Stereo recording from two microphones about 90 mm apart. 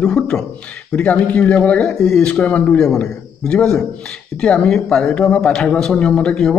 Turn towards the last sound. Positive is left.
turn(degrees=10)  # may be behind; listen again after turning